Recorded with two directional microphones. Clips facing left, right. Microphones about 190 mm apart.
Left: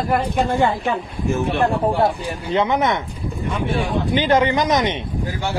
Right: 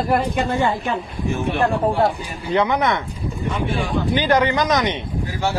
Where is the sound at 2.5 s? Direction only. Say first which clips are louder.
Even; 20° left (ahead or behind).